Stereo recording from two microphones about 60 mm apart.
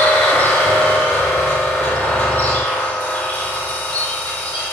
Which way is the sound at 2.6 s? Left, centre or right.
Centre.